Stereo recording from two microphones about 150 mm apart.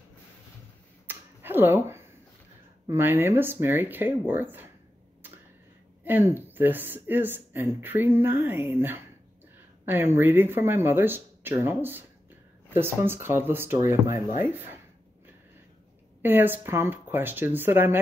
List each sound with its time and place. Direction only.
1.0 s finger snapping: 15° right (ahead or behind)
2.9 s speech: 15° right (ahead or behind)
6.0 s speech: 15° right (ahead or behind)
16.2 s speech: 15° right (ahead or behind)